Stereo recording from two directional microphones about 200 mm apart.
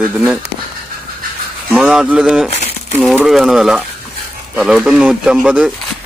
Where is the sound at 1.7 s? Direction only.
5° right (ahead or behind).